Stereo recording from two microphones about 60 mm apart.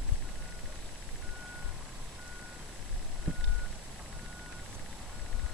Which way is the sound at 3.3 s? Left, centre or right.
Right.